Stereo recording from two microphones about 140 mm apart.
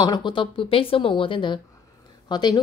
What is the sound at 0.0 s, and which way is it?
Speech, 30° left (ahead or behind).